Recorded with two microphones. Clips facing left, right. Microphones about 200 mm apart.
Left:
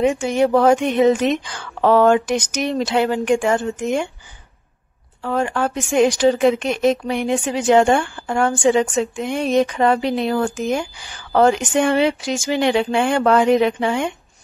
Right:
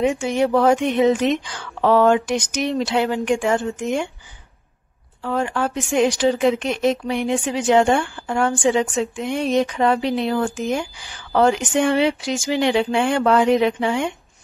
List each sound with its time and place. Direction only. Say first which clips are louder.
0.0 s a woman's voice: left 2 dB; 45° left (ahead or behind)
5.2 s a woman's voice: left 2 dB; 45° left (ahead or behind)